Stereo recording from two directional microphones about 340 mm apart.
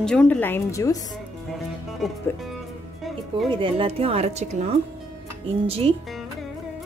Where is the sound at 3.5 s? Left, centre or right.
Centre.